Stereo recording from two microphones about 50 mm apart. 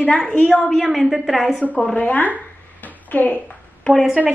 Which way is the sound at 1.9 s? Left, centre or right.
Left.